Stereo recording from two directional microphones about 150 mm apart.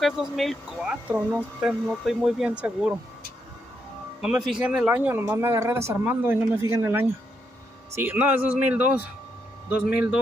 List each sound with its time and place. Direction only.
0.0 s speech: centre (ahead or behind)
4.2 s speech: 5° right (ahead or behind)